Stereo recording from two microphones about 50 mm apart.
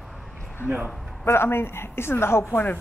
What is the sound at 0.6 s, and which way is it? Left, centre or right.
Speech, right.